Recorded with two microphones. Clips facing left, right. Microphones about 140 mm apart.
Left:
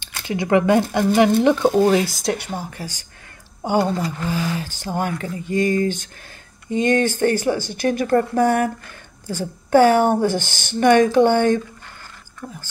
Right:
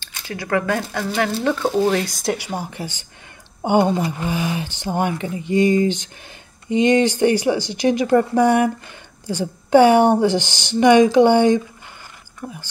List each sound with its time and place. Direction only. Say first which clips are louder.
0.0 s speech: left 6 dB; 20° left (ahead or behind)
1.9 s speech: left 2 dB; centre (ahead or behind)
2.5 s speech: right 2 dB; 15° right (ahead or behind)